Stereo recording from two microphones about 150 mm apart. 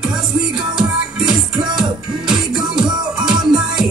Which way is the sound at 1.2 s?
30° right (ahead or behind).